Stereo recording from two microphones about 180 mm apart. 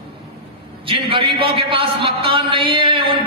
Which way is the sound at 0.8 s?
30° right (ahead or behind).